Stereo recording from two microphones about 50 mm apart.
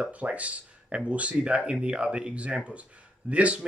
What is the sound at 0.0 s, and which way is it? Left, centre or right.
Speech, right.